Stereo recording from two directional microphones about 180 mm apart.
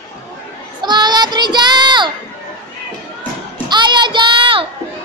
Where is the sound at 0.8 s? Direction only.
25° right (ahead or behind).